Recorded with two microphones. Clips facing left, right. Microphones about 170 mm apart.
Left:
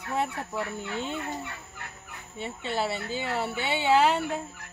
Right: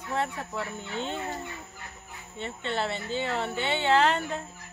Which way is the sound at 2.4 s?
5° left (ahead or behind).